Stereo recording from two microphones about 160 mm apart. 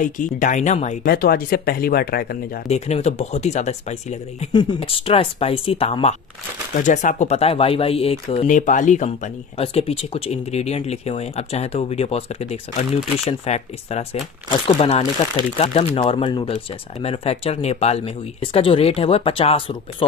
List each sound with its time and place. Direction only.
0.0 s speech: 55° left (ahead or behind)
1.1 s speech: 65° left (ahead or behind)
2.7 s speech: 40° left (ahead or behind)
4.5 s speech: 30° left (ahead or behind)
6.8 s speech: 50° left (ahead or behind)
8.5 s speech: 50° left (ahead or behind); by 20.1 s 35° left (ahead or behind)